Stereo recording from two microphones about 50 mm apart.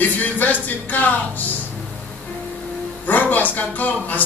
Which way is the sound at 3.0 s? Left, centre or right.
Left.